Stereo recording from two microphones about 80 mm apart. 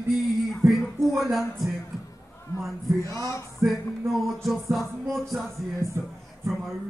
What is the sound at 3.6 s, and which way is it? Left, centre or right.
Music, right.